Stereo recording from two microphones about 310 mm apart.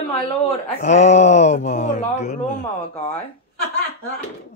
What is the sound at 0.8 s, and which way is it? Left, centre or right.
Speech, left.